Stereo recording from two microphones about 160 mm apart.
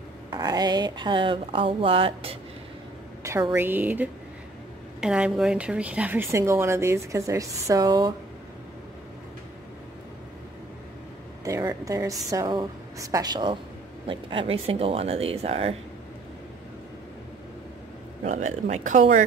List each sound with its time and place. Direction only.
0.3 s speech: 25° right (ahead or behind)
3.5 s speech: 10° right (ahead or behind)
11.4 s a woman's voice: 20° right (ahead or behind); by 15.7 s 40° right (ahead or behind)
18.2 s speech: 45° right (ahead or behind)